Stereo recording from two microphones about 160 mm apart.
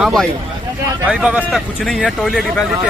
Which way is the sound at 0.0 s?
5° left (ahead or behind).